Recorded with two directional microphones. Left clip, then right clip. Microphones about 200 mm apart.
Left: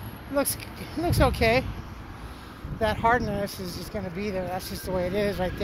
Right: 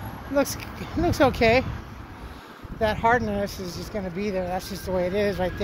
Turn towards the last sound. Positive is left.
turn(degrees=-15)  # may be behind; listen again after turning